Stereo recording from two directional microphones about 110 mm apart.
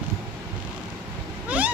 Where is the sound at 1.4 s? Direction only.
10° right (ahead or behind).